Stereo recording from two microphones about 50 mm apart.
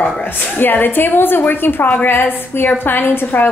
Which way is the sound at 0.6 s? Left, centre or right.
Left.